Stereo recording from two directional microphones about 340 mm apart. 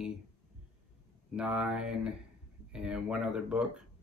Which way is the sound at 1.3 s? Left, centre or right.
Centre.